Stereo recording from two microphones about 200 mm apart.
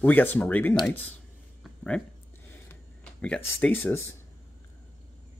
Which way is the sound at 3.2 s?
5° left (ahead or behind).